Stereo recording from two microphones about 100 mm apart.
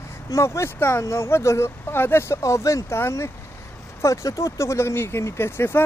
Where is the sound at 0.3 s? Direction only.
30° left (ahead or behind).